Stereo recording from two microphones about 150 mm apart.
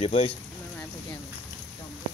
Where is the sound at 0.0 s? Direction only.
40° left (ahead or behind).